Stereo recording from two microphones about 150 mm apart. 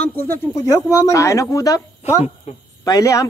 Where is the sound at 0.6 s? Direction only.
20° left (ahead or behind).